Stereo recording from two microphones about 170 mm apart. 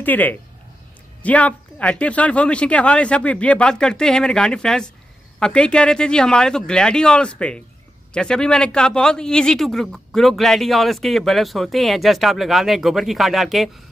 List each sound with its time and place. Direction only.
0.0 s a man's voice: 10° left (ahead or behind)